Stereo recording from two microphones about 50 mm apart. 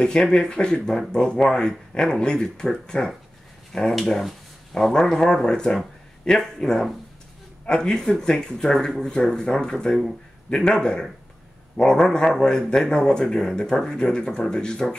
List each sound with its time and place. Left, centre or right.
0.0 s speech: centre
3.9 s speech: centre